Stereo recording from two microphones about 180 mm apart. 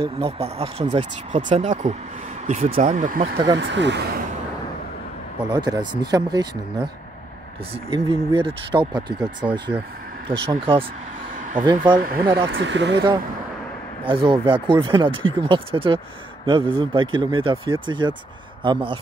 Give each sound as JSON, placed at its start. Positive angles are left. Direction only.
{"t": 0.0, "sound": "speech", "side_deg": -30}
{"t": 3.5, "sound": "speech", "side_deg": -80}
{"t": 5.5, "sound": "speech", "side_deg": -25}
{"t": 7.7, "sound": "speech", "side_deg": -30}
{"t": 9.7, "sound": "speech", "side_deg": -15}
{"t": 10.3, "sound": "speech", "side_deg": -30}
{"t": 12.0, "sound": "speech", "side_deg": -55}
{"t": 12.4, "sound": "speech", "side_deg": -90}
{"t": 14.0, "sound": "speech", "side_deg": -30}